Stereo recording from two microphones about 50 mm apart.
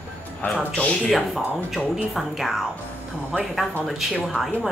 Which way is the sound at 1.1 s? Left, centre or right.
Centre.